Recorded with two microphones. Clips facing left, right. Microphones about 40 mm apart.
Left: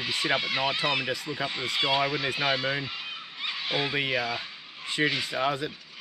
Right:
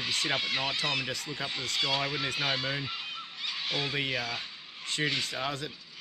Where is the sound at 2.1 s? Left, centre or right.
Centre.